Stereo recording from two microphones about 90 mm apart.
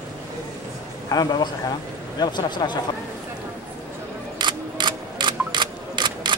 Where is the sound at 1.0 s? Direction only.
45° left (ahead or behind).